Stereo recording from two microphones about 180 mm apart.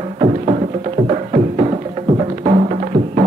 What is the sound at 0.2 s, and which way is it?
Music, 40° right (ahead or behind).